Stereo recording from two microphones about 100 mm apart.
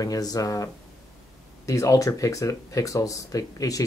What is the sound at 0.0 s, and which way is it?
Speech, 40° left (ahead or behind).